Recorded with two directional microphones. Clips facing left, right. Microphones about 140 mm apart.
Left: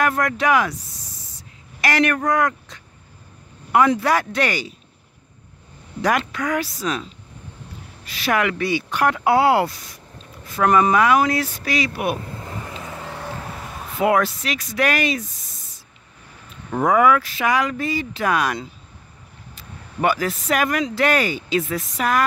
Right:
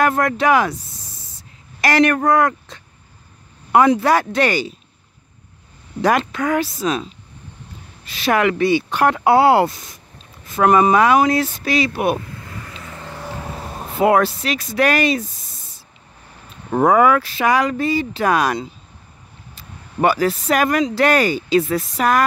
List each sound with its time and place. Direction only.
0.0 s speech: 30° right (ahead or behind)
1.8 s speech: 35° right (ahead or behind)
4.0 s speech: 30° right (ahead or behind)
6.0 s speech: 30° right (ahead or behind)
12.4 s vehicle: 25° left (ahead or behind); by 13.4 s centre (ahead or behind)
13.6 s speech: 30° right (ahead or behind)
16.7 s speech: 35° right (ahead or behind)